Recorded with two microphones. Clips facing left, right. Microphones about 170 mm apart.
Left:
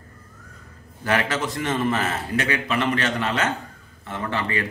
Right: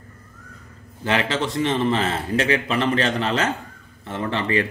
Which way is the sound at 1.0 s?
25° right (ahead or behind).